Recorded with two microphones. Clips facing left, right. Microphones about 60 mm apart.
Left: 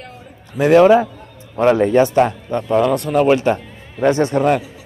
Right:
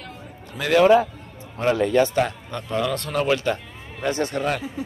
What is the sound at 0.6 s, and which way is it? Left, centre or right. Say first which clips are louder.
Speech: left 12 dB; left.